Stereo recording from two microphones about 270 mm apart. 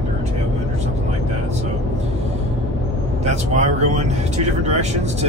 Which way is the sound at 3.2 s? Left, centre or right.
Right.